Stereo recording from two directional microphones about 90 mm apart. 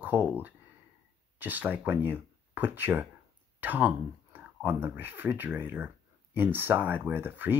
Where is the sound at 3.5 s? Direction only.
20° right (ahead or behind).